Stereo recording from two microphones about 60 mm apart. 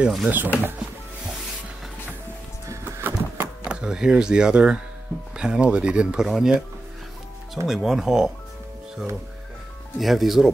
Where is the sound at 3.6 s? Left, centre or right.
Centre.